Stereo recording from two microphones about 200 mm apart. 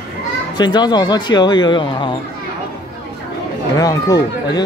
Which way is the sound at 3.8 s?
20° left (ahead or behind).